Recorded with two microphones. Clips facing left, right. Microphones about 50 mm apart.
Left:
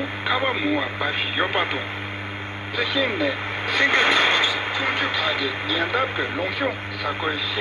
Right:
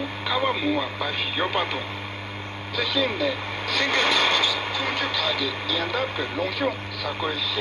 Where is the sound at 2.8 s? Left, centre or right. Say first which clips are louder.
Left 2 dB; left.